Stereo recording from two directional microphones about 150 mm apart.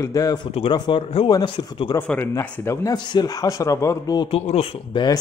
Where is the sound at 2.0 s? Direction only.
15° left (ahead or behind).